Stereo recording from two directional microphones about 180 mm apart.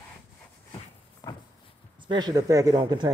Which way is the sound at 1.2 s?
20° left (ahead or behind).